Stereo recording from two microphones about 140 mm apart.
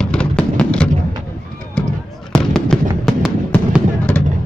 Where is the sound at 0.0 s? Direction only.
5° left (ahead or behind).